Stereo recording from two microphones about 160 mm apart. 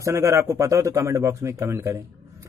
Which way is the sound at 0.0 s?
20° right (ahead or behind).